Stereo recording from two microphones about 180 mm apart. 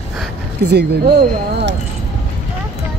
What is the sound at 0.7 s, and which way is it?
Speech, 70° right (ahead or behind).